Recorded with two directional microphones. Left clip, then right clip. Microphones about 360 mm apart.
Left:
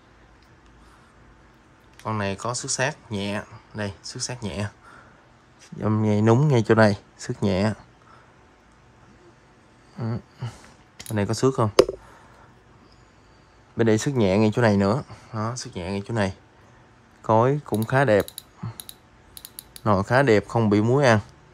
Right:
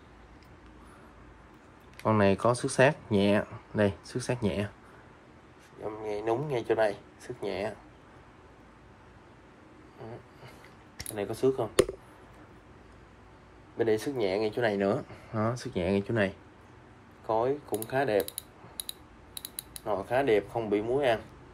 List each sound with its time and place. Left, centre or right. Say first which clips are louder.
2.0 s speech: right 3 dB; centre
5.8 s speech: left 10 dB; left
6.5 s speech: left 7 dB; left
11.1 s speech: left 5 dB; centre
13.7 s speech: left 6 dB; centre
17.4 s speech: left 8 dB; centre
18.2 s typing: left 3 dB; left
20.1 s speech: left 6 dB; centre